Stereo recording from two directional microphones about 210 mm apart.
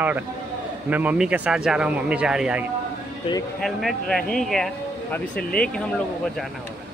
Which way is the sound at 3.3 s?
30° left (ahead or behind).